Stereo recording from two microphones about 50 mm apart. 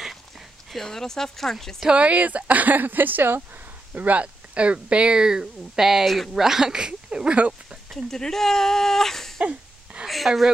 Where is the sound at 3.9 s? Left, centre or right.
Right; by 6.3 s centre.